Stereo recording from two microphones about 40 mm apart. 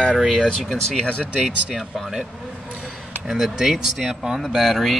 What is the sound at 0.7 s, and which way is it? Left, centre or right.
Speech, centre.